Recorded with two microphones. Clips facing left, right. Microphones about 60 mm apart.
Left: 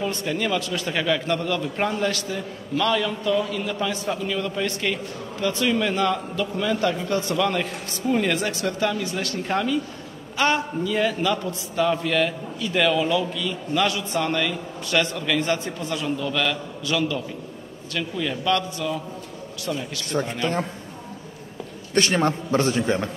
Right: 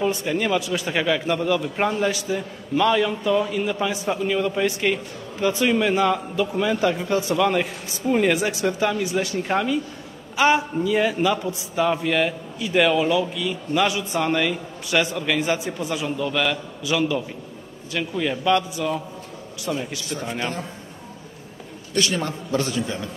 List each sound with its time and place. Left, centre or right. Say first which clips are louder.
0.0 s a man's voice: right 3 dB; centre
20.1 s a man's voice: left 8 dB; left
21.9 s a man's voice: left 3 dB; left